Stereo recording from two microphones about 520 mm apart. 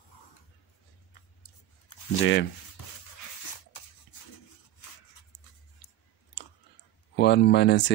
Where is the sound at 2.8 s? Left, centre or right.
Left.